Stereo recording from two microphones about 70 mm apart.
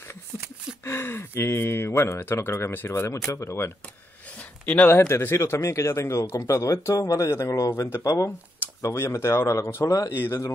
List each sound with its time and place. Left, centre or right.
0.8 s speech: left
2.9 s speech: left
4.4 s a sound: left
4.9 s speech: left
7.6 s speech: left
8.8 s speech: left
10.2 s speech: left